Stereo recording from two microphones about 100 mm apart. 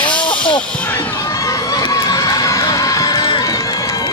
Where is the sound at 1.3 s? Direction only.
35° left (ahead or behind).